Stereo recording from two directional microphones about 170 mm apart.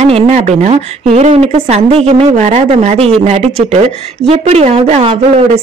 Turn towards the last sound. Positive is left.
turn(degrees=-40)  # may be behind; listen again after turning